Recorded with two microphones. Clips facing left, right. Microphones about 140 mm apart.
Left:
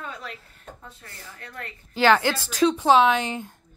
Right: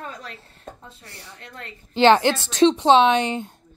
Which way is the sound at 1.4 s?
25° right (ahead or behind).